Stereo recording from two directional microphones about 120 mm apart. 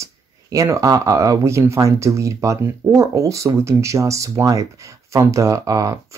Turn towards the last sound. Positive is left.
turn(degrees=-25)  # may be behind; listen again after turning